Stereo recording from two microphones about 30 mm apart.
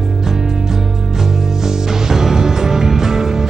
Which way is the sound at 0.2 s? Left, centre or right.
Centre.